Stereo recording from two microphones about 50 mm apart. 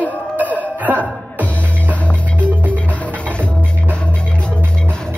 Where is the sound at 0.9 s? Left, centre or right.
Right.